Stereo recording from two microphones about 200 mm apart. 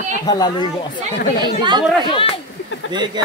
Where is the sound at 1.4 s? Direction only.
20° right (ahead or behind).